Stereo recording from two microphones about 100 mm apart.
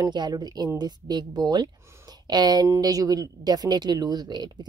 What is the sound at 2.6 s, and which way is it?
A woman's voice, 35° right (ahead or behind).